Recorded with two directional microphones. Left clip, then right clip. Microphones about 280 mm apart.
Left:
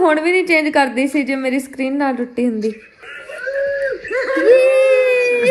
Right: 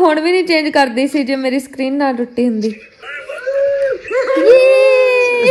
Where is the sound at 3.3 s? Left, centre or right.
Centre.